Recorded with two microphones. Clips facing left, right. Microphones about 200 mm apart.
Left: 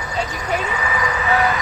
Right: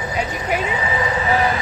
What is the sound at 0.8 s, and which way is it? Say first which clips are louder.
Speech: right 2 dB; 30° right (ahead or behind).